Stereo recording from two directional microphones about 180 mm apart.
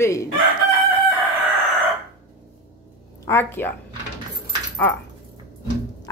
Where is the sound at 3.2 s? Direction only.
10° left (ahead or behind).